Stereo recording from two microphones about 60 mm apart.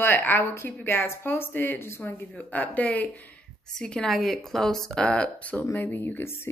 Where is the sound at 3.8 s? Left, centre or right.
Centre.